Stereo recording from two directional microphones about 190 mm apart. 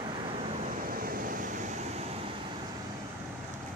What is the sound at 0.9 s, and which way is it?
Waves, 50° right (ahead or behind).